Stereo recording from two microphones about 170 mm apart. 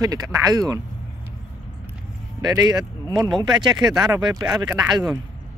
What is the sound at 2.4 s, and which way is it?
Speech, 25° right (ahead or behind).